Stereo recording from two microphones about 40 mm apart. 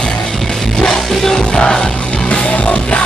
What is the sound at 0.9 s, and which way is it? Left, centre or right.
Music, centre.